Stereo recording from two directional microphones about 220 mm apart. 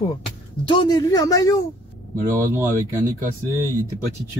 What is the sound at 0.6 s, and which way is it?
Speech, 20° left (ahead or behind).